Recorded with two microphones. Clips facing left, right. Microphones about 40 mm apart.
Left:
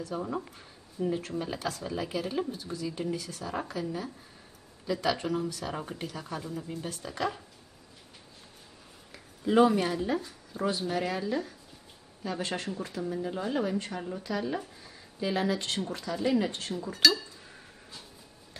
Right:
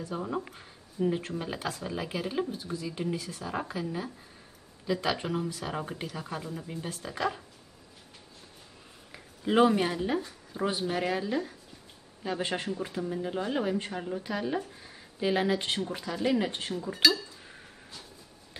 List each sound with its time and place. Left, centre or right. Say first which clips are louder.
0.0 s speech: even; centre
4.8 s speech: even; centre
9.4 s speech: left 1 dB; right
9.7 s speech: even; centre